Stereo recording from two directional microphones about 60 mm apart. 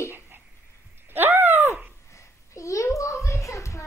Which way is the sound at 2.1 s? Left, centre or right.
Left.